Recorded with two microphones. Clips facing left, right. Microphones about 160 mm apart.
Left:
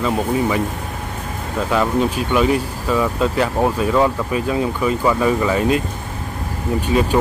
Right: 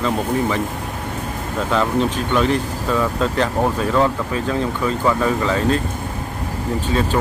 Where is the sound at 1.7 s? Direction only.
10° left (ahead or behind).